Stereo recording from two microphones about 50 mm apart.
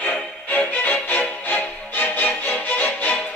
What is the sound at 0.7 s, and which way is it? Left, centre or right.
Music, left.